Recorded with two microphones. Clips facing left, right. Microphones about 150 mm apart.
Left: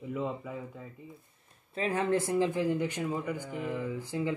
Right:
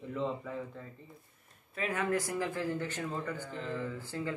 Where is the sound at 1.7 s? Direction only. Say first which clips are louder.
Left 4 dB; 30° left (ahead or behind).